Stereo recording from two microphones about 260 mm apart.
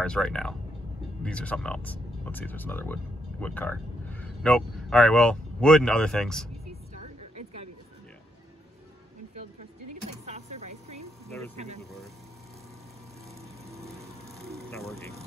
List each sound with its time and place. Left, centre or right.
0.0 s speech: centre
10.0 s vehicle: right
11.2 s a sound: centre
11.5 s speech: right
14.0 s a sound: centre
14.7 s speech: centre